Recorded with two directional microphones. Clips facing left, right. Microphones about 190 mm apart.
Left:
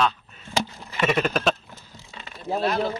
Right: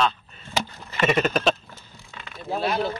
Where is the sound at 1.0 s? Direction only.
Centre (ahead or behind).